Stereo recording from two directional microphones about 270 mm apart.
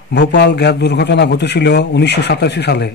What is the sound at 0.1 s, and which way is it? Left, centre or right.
Speech, left.